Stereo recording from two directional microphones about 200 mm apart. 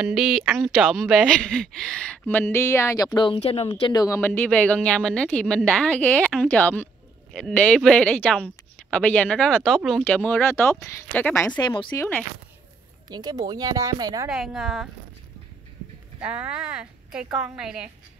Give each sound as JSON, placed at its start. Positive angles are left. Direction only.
{"t": 0.0, "sound": "speech", "side_deg": 0}
{"t": 11.6, "sound": "speech", "side_deg": 25}
{"t": 12.0, "sound": "speech", "side_deg": 10}
{"t": 13.1, "sound": "speech", "side_deg": -20}
{"t": 14.3, "sound": "speech", "side_deg": 0}
{"t": 16.2, "sound": "speech", "side_deg": -5}